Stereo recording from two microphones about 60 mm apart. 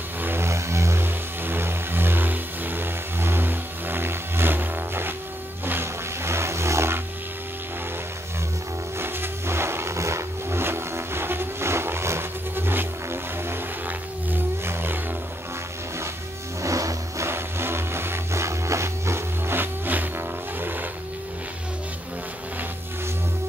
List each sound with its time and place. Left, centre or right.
0.2 s music: right
0.5 s vehicle: right
5.7 s a sound: right
8.9 s vehicle: right
14.7 s music: right
16.6 s vehicle: right
17.3 s a sound: right